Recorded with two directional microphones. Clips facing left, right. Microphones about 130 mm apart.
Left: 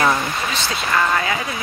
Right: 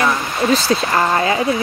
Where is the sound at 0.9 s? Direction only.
30° right (ahead or behind).